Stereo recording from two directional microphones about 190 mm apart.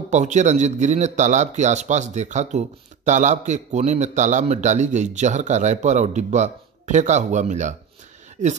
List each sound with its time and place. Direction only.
0.1 s a man's voice: 40° right (ahead or behind)